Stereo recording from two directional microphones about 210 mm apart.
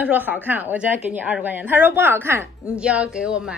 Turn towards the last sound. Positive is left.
turn(degrees=-5)  # may be behind; listen again after turning